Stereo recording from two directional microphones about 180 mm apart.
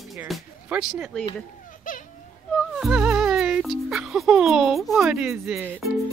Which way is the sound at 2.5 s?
5° right (ahead or behind).